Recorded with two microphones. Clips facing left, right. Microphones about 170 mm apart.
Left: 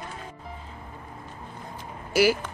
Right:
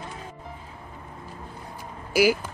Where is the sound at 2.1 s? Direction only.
10° right (ahead or behind).